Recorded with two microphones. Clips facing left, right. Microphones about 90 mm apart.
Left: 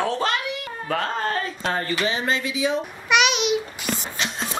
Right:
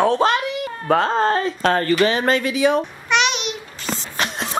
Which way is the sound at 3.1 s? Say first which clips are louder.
Left 1 dB; 5° left (ahead or behind).